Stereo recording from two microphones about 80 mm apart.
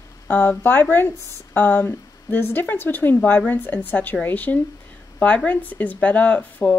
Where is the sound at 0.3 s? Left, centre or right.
Left.